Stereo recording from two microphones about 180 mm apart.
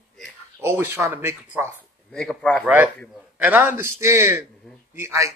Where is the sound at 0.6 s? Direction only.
10° right (ahead or behind).